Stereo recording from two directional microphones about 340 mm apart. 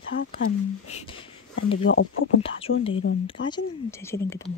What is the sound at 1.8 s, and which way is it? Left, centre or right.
Speech, left.